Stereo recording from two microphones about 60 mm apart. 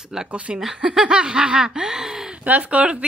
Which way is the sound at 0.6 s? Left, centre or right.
Centre.